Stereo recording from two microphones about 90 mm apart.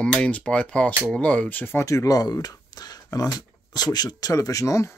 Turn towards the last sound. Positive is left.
turn(degrees=35)  # may be behind; listen again after turning